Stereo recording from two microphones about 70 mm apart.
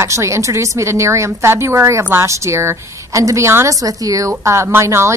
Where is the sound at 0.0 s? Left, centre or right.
Right.